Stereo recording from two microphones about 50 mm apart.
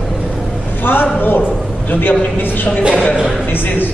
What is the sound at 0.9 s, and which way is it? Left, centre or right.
A man's voice, left.